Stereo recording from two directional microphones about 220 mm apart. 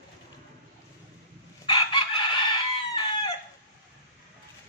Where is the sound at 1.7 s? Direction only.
20° left (ahead or behind).